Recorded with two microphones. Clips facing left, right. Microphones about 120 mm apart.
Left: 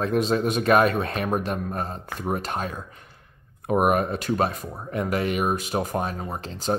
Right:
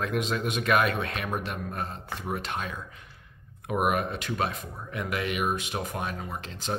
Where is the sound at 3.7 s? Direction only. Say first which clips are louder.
Left 6 dB; 40° left (ahead or behind).